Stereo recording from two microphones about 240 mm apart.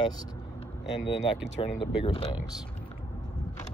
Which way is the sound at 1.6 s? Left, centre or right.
Left.